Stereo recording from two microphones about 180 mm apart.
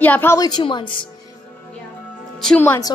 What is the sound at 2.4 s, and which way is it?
Speech, 10° left (ahead or behind).